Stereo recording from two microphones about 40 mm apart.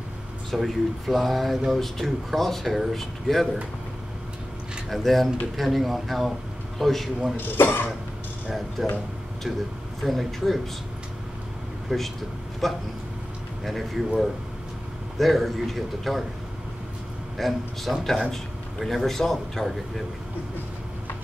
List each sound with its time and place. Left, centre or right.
0.5 s speech: centre
4.8 s speech: centre
7.3 s speech: left
8.8 s speech: centre
10.0 s speech: centre
11.9 s speech: centre
12.6 s a sound: centre
13.7 s speech: centre
15.1 s speech: centre
17.4 s a man's voice: centre